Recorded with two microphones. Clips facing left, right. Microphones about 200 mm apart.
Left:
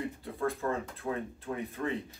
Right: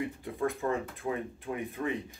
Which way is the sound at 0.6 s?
20° right (ahead or behind).